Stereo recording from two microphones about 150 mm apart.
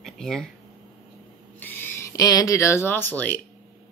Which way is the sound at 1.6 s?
10° left (ahead or behind).